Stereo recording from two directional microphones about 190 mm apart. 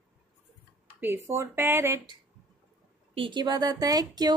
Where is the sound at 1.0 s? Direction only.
10° right (ahead or behind).